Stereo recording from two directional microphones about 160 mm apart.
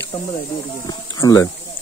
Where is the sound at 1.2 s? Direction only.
20° left (ahead or behind).